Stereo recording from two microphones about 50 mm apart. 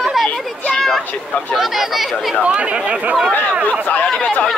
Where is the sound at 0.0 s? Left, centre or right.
Centre.